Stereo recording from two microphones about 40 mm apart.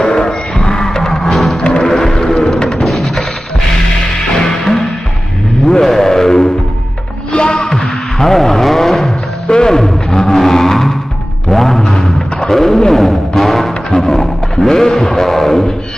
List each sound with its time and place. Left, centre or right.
0.0 s music: centre
1.6 s music: left
1.9 s a sound: centre
2.8 s music: centre
4.5 s music: centre
5.7 s a sound: centre
9.5 s a sound: centre
11.5 s music: centre
13.8 s roaring cats: centre